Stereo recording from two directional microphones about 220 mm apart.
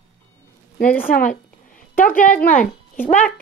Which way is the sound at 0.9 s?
40° left (ahead or behind).